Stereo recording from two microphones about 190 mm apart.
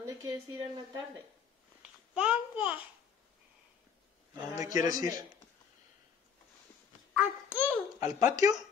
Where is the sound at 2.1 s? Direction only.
5° right (ahead or behind).